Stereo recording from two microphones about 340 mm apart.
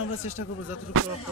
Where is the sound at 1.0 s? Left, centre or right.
Right.